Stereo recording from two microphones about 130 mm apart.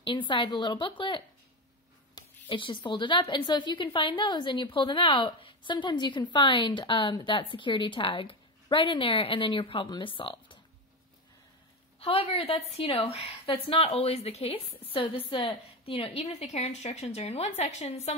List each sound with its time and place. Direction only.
0.0 s a woman's voice: 40° left (ahead or behind)
12.0 s a woman's voice: 50° left (ahead or behind)